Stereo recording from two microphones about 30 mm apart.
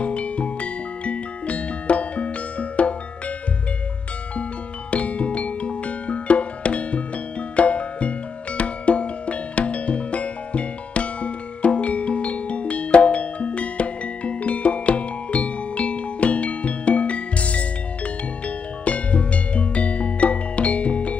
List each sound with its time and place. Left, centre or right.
0.0 s music: left
4.9 s music: left